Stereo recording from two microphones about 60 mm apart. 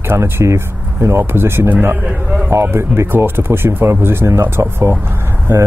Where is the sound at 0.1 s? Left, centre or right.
Right.